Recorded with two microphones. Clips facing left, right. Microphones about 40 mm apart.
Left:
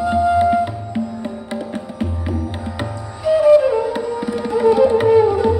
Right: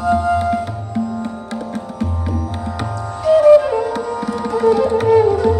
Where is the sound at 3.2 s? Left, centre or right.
Centre.